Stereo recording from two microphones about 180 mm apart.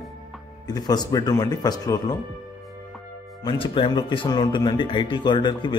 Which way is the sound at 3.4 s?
30° left (ahead or behind).